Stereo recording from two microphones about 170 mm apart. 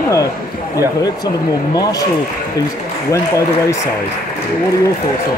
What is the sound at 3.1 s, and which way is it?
Speech, 20° left (ahead or behind).